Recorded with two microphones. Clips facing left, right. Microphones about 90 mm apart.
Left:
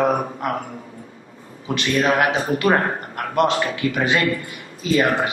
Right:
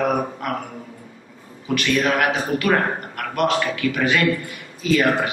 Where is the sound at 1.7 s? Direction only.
25° left (ahead or behind).